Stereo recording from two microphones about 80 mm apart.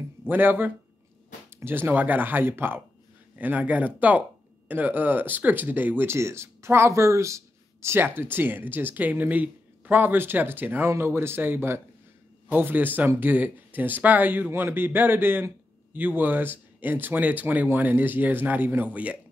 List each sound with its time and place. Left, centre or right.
0.3 s speech: right